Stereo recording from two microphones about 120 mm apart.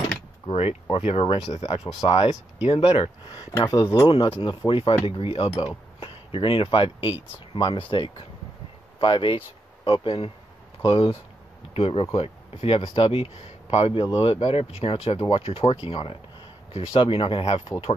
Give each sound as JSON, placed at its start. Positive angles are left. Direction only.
{"t": 0.5, "sound": "speech", "side_deg": 55}
{"t": 1.5, "sound": "speech", "side_deg": 70}
{"t": 3.5, "sound": "speech", "side_deg": 30}
{"t": 4.1, "sound": "speech", "side_deg": 40}